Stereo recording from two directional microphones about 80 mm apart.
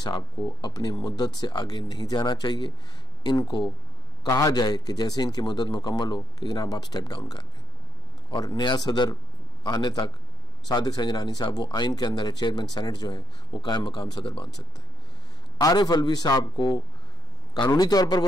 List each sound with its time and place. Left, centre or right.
0.0 s a man's voice: left
8.5 s a man's voice: left
15.6 s a man's voice: left